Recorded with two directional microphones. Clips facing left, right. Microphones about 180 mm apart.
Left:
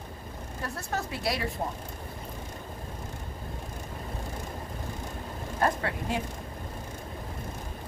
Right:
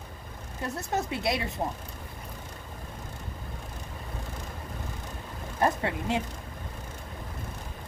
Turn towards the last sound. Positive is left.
turn(degrees=-25)  # may be behind; listen again after turning